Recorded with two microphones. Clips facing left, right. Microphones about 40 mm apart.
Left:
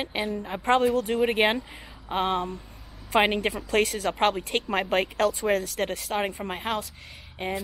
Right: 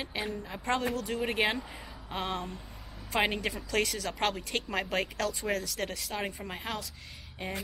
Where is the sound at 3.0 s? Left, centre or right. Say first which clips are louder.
Left 7 dB; left.